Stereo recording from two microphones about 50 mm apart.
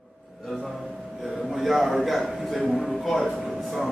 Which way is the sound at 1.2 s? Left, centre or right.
Centre.